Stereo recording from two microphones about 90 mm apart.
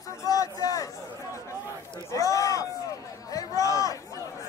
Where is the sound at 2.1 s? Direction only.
40° left (ahead or behind).